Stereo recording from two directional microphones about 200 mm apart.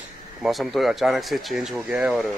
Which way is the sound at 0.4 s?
Centre (ahead or behind).